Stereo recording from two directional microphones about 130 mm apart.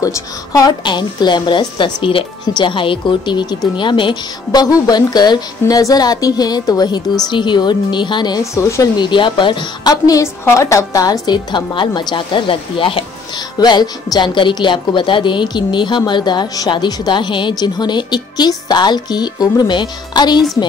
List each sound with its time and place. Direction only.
0.0 s a woman's voice: 25° left (ahead or behind)
8.9 s a woman's voice: 35° left (ahead or behind)